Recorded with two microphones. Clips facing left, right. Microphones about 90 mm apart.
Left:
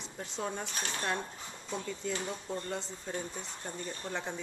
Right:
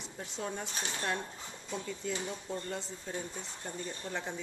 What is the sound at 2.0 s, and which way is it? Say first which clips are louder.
Speech: left 1 dB; 5° right (ahead or behind).